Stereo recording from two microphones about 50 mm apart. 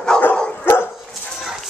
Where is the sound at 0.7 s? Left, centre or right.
Left.